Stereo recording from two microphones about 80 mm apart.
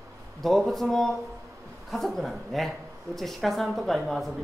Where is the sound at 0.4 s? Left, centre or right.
Centre.